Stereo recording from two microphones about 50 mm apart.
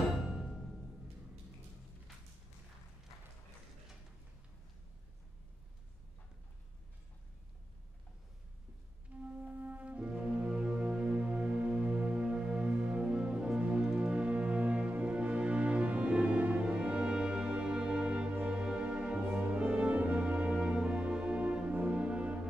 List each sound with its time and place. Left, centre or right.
9.2 s music: right
19.5 s brass instrument: right
21.9 s music: right